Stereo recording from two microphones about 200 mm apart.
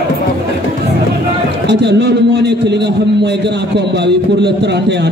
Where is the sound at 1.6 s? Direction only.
60° right (ahead or behind).